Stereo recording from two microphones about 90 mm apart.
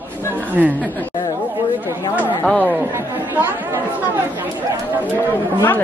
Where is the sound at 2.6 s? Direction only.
20° right (ahead or behind).